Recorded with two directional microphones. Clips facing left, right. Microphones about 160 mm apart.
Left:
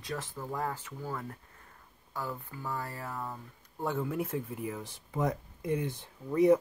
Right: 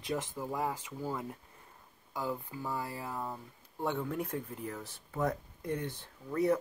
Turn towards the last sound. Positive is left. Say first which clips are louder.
# left 6 dB
turn(degrees=15)  # may be behind; listen again after turning